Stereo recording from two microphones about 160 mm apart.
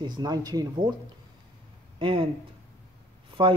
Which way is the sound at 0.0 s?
25° right (ahead or behind).